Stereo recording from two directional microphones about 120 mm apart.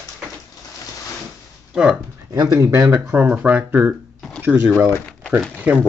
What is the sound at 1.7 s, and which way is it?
Speech, 5° right (ahead or behind).